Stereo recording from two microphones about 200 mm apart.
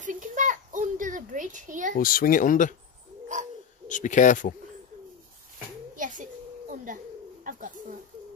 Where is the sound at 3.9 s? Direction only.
40° left (ahead or behind).